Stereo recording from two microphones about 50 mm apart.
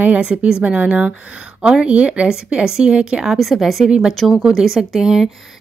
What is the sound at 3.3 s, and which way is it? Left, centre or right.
Speech, centre.